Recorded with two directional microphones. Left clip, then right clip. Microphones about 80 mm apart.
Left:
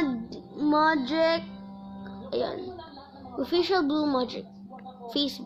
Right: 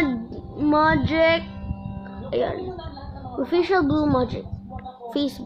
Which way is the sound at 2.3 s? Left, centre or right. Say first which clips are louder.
Right 6 dB; left.